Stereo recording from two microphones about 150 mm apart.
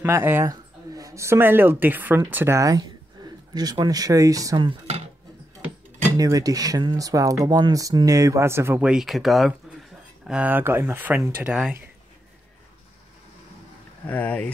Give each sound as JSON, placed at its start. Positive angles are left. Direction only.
{"t": 0.0, "sound": "speech", "side_deg": -15}
{"t": 6.1, "sound": "speech", "side_deg": -25}
{"t": 14.0, "sound": "speech", "side_deg": 10}